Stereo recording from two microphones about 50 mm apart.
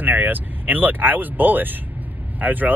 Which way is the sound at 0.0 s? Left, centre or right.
Right.